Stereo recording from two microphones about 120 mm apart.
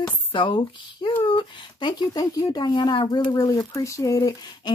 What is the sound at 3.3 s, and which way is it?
Speech, 30° left (ahead or behind).